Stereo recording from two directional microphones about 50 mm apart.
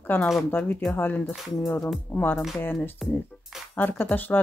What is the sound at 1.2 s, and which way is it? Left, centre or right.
Speech, centre.